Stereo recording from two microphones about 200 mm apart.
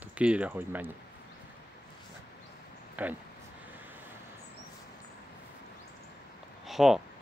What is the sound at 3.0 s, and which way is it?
Speech, 10° right (ahead or behind).